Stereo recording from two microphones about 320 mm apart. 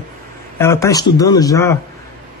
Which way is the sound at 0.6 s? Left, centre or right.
Centre.